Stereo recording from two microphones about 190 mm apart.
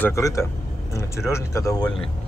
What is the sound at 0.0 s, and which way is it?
Speech, 15° left (ahead or behind).